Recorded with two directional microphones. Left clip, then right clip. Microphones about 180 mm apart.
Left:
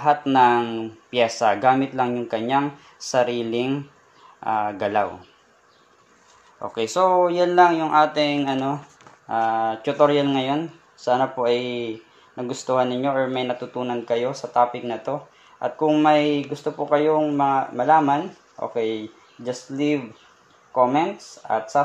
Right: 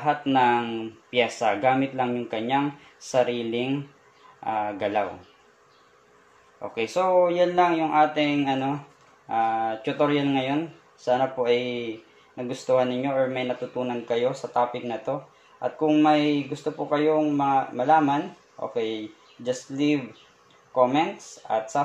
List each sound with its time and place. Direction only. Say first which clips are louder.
0.0 s speech: left 5 dB; 30° left (ahead or behind)
6.9 s speech: left 3 dB; 30° left (ahead or behind)